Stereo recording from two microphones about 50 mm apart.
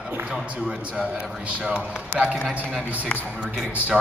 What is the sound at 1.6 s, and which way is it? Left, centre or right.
Speech, right.